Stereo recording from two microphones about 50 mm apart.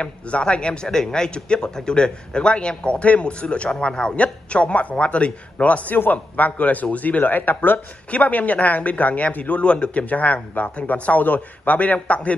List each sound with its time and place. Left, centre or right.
0.0 s a man's voice: left